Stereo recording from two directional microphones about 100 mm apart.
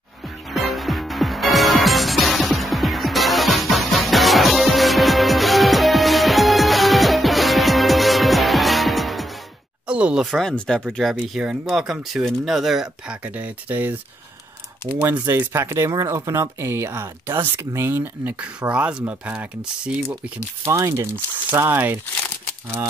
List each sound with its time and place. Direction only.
0.5 s music: centre (ahead or behind)
9.8 s a sound: 10° right (ahead or behind)
10.3 s speech: 5° left (ahead or behind); by 13.9 s 15° right (ahead or behind)
15.2 s speech: 30° right (ahead or behind)
20.6 s speech: 30° right (ahead or behind)